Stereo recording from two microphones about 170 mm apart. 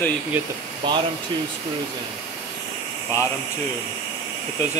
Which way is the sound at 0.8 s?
30° right (ahead or behind).